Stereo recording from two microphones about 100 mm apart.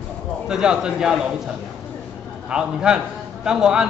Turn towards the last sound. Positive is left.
turn(degrees=-5)  # may be behind; listen again after turning